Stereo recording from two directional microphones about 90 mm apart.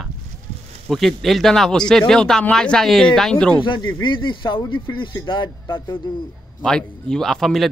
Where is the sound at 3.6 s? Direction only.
60° left (ahead or behind).